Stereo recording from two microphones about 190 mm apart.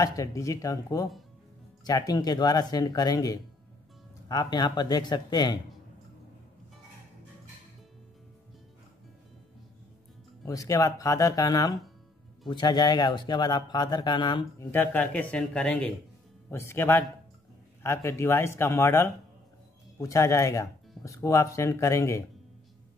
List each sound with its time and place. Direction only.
0.0 s speech: 15° left (ahead or behind)
10.4 s speech: 15° left (ahead or behind)